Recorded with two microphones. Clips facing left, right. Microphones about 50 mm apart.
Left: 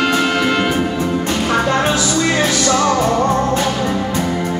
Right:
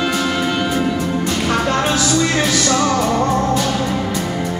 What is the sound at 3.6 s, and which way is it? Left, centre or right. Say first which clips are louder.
Music: left 1 dB; left.